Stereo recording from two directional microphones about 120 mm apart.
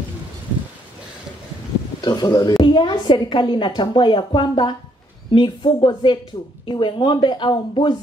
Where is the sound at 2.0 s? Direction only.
35° left (ahead or behind).